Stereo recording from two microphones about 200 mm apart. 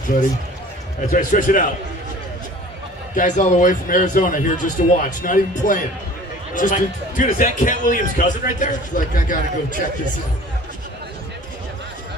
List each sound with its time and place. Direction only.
1.1 s a man's voice: 40° left (ahead or behind)
3.2 s a man's voice: 40° left (ahead or behind)